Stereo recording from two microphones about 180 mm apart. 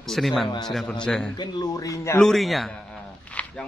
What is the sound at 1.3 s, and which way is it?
Speech, 20° left (ahead or behind).